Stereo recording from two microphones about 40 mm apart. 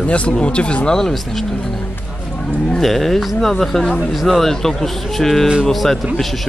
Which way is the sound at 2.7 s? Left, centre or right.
Centre.